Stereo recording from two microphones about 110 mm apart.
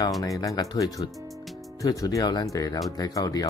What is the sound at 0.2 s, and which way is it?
Speech, 30° left (ahead or behind).